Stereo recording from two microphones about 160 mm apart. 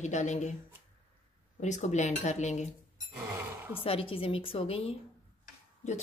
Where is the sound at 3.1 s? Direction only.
15° right (ahead or behind).